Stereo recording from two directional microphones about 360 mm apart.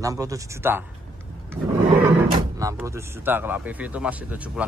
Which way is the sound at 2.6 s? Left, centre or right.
Centre.